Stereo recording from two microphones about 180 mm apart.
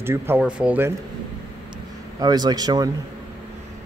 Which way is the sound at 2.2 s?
20° right (ahead or behind).